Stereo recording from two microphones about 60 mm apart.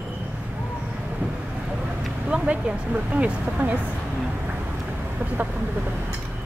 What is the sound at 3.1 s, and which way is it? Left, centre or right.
Speech, right.